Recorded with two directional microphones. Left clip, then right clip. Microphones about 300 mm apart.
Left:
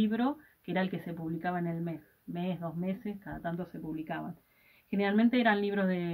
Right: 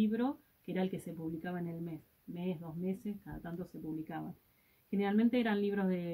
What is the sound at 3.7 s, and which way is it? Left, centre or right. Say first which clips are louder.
Speech: left 3 dB; centre.